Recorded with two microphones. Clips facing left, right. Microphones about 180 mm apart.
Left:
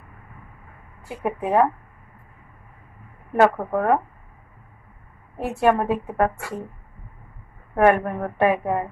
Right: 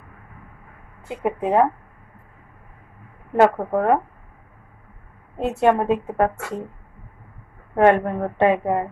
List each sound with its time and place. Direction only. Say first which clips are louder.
1.0 s a woman's voice: right 3 dB; 20° right (ahead or behind)
3.3 s a woman's voice: right 2 dB; 20° right (ahead or behind)
5.4 s a woman's voice: right 2 dB; 20° right (ahead or behind)
7.7 s a woman's voice: right 2 dB; 20° right (ahead or behind)